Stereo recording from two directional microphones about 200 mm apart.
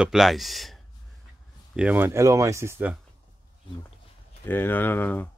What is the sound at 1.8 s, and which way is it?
Speech, 10° right (ahead or behind).